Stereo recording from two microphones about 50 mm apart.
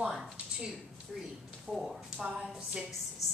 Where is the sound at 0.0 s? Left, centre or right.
Centre.